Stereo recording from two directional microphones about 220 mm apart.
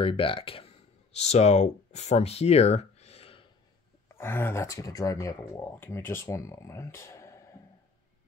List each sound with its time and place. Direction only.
0.0 s speech: 25° left (ahead or behind)
4.1 s speech: 10° left (ahead or behind)